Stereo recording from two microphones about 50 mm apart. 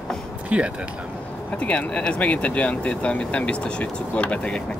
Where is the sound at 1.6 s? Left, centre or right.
Left.